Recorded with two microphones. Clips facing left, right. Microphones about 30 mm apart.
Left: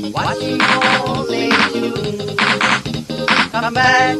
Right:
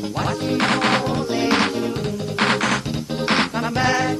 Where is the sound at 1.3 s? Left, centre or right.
Left.